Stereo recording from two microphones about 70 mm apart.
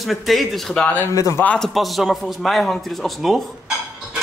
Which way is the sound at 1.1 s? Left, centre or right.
Left.